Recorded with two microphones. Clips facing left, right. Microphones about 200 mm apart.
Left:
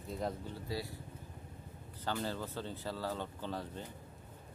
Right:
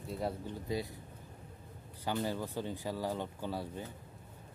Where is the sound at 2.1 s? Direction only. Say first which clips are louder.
Right 3 dB; 15° right (ahead or behind).